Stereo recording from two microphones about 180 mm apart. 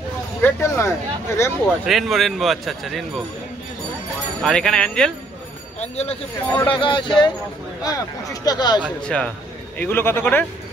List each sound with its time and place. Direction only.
0.4 s speech: 15° left (ahead or behind)
1.9 s a man's voice: centre (ahead or behind)
4.4 s a man's voice: 5° left (ahead or behind)
5.8 s speech: 35° left (ahead or behind)
6.7 s speech: 25° left (ahead or behind)
9.0 s speech: 5° left (ahead or behind)